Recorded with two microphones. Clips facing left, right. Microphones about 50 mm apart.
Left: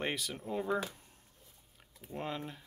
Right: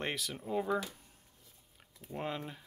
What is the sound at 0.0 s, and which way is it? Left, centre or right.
Speech, centre.